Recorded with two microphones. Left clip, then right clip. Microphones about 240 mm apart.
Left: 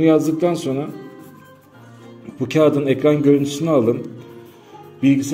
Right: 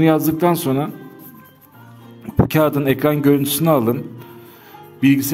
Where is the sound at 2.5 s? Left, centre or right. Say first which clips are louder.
Left 3 dB; right.